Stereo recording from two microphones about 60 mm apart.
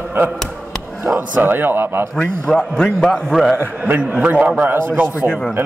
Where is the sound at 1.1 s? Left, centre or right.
Right.